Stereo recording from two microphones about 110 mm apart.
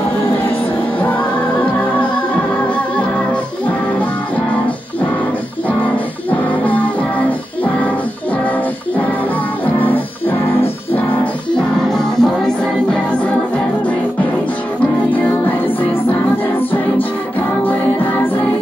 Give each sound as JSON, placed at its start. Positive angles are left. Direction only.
{"t": 0.9, "sound": "music", "side_deg": 15}
{"t": 6.5, "sound": "music", "side_deg": 15}
{"t": 9.8, "sound": "music", "side_deg": 15}
{"t": 11.9, "sound": "music", "side_deg": 5}
{"t": 15.1, "sound": "music", "side_deg": 15}